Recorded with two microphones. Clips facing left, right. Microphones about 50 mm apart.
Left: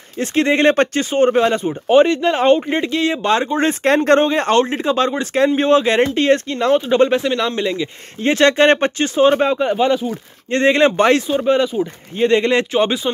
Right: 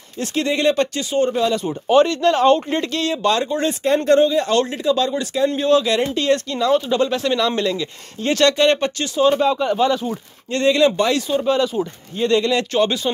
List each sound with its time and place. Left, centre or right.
0.2 s speech: left
1.6 s speech: left
3.8 s speech: left
4.2 s speech: left
11.6 s speech: centre
12.2 s speech: left
12.7 s speech: centre